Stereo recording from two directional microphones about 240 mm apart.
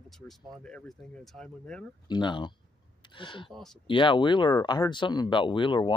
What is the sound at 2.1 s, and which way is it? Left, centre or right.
Speech, centre.